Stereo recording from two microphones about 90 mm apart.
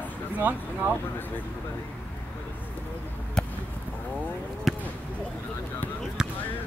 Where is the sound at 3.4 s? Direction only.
10° left (ahead or behind).